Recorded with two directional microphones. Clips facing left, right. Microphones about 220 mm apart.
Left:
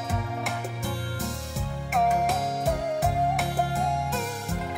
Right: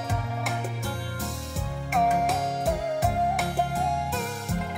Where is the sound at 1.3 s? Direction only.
Centre (ahead or behind).